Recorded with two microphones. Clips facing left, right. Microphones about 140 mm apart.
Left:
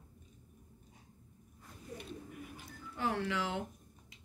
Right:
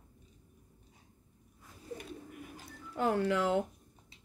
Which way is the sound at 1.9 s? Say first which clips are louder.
Right 4 dB; 30° right (ahead or behind).